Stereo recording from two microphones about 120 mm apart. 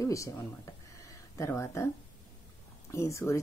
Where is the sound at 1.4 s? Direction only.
25° left (ahead or behind).